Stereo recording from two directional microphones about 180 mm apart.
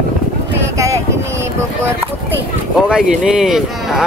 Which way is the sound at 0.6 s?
15° right (ahead or behind).